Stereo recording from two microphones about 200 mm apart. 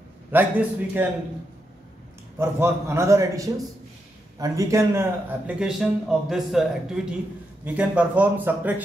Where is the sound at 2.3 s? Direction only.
10° right (ahead or behind).